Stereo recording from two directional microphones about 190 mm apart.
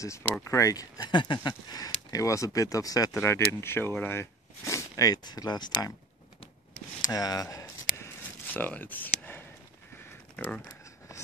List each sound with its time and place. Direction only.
0.0 s speech: 15° left (ahead or behind)
7.0 s speech: 20° left (ahead or behind)